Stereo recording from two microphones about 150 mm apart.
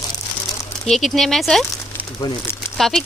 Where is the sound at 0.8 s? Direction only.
5° left (ahead or behind).